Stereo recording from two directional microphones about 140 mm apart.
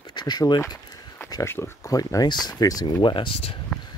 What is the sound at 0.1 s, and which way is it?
Speech, 30° left (ahead or behind).